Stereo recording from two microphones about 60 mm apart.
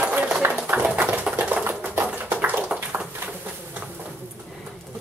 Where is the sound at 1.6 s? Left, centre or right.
Right.